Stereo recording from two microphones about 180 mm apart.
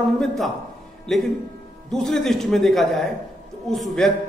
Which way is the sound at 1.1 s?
Centre (ahead or behind).